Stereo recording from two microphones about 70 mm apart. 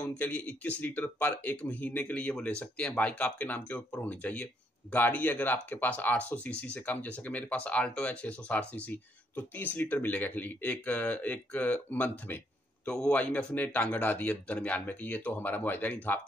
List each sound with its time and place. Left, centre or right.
0.1 s speech: centre
12.8 s speech: centre